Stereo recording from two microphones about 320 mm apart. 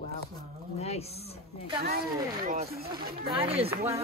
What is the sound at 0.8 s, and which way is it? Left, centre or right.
Speech, centre.